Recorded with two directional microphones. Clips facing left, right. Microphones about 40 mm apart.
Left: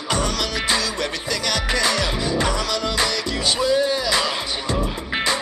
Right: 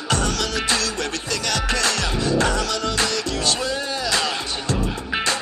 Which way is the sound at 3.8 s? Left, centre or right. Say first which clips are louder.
Left 3 dB; centre.